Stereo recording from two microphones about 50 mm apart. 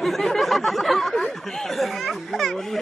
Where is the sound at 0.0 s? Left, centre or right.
Centre.